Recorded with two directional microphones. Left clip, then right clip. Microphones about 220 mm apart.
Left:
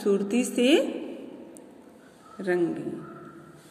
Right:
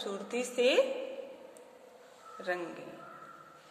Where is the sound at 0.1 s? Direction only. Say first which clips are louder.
Left 10 dB; 25° left (ahead or behind).